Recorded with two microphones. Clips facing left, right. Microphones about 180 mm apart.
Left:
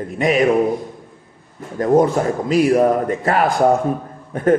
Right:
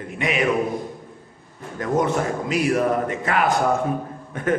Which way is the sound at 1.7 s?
35° left (ahead or behind).